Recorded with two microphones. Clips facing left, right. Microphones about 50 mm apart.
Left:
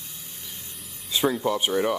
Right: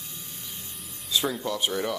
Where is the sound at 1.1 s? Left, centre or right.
Left.